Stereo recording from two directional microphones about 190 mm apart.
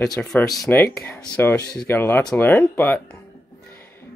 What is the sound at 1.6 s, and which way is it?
Speech, 55° left (ahead or behind).